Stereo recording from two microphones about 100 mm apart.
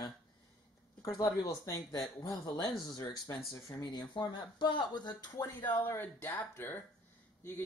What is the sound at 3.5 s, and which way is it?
Speech, 45° left (ahead or behind).